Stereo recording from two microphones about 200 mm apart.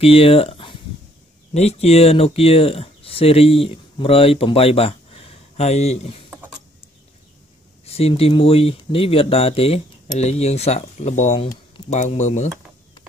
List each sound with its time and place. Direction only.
0.0 s speech: 30° left (ahead or behind)
7.8 s speech: 30° left (ahead or behind)